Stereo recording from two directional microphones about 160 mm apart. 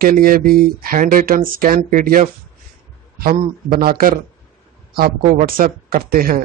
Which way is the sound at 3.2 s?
70° right (ahead or behind).